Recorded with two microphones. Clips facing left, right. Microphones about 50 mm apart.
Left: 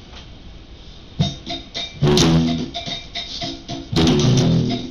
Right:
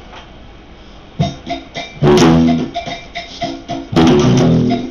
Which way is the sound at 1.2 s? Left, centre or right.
Right.